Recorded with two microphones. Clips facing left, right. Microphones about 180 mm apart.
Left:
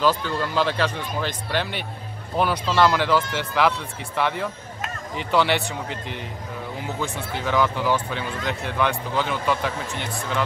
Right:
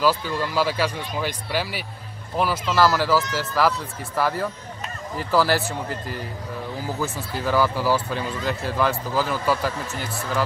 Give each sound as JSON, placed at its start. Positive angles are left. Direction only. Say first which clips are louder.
{"t": 0.0, "sound": "speech", "louder": "even", "side_deg": -10}
{"t": 7.4, "sound": "speech", "louder": "right 1 dB", "side_deg": -5}